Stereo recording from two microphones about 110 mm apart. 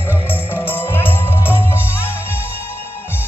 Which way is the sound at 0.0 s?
20° left (ahead or behind).